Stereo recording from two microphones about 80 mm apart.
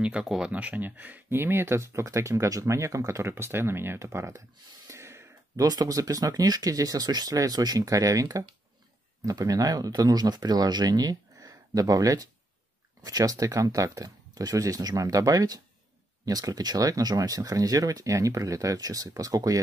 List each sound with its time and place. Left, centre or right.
0.0 s speech: centre; by 4.4 s right
4.8 s a sound: right
5.7 s speech: right